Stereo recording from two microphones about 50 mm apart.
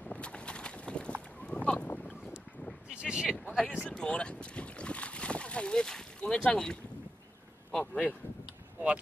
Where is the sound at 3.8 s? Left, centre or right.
Centre.